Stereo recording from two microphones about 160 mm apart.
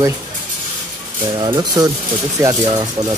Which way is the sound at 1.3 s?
25° right (ahead or behind).